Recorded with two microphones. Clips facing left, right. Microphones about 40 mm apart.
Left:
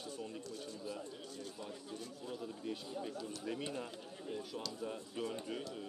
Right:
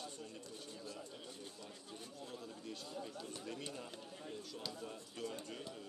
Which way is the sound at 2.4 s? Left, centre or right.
Centre.